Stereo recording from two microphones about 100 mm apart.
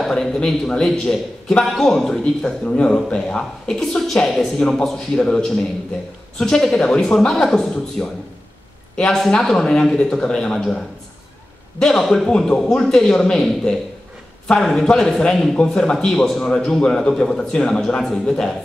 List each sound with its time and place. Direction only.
0.0 s a man's voice: 5° left (ahead or behind)
11.8 s a man's voice: 5° left (ahead or behind)